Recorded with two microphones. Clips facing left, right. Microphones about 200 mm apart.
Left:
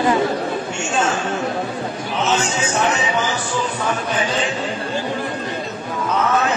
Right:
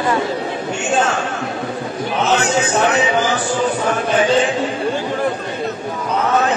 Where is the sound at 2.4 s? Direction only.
35° right (ahead or behind).